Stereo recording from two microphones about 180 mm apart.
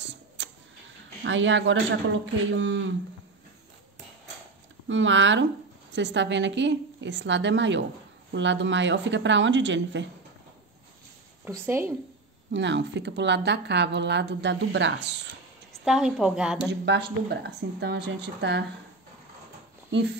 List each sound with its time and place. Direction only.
0.0 s a sound: 80° right
1.2 s a man's voice: 90° right
4.8 s a man's voice: 90° right
5.9 s a woman's voice: 80° right
11.6 s speech: 10° right (ahead or behind)
12.4 s speech: 80° right
15.8 s a woman's voice: 5° right (ahead or behind)
16.8 s speech: 70° right (ahead or behind)
19.9 s speech: 75° right (ahead or behind)